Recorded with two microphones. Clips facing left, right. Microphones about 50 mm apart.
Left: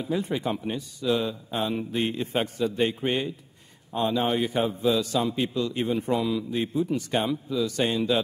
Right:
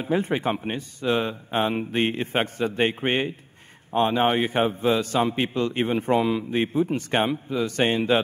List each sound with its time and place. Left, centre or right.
0.0 s a man's voice: right